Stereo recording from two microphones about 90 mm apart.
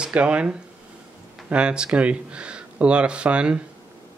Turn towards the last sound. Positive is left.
turn(degrees=-10)  # may be behind; listen again after turning